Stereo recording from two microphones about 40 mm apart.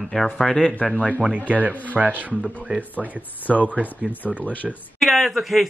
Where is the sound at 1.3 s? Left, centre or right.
Right.